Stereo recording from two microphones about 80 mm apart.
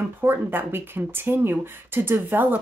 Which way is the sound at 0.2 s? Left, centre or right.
Right.